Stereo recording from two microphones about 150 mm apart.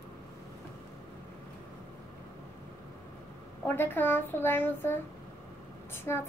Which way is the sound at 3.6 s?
15° left (ahead or behind).